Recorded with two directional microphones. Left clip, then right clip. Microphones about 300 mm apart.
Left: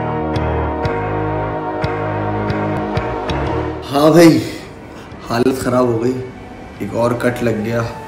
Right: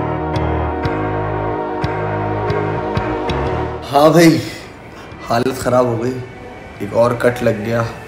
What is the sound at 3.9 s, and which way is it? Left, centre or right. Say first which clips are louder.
A man's voice: even; centre.